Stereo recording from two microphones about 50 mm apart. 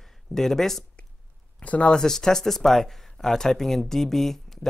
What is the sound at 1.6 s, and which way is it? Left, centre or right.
Speech, left.